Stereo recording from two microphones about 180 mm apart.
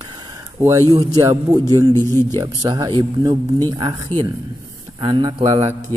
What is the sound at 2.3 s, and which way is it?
A man's voice, 25° right (ahead or behind).